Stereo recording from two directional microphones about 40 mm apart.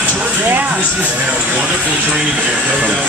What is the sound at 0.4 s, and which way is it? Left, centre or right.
Speech, right.